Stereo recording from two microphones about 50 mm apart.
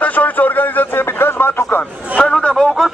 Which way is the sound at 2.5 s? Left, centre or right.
Centre.